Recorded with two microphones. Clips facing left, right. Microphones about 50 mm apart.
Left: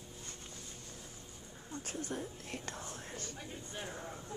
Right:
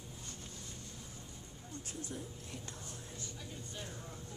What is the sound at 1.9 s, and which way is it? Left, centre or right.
Speech, left.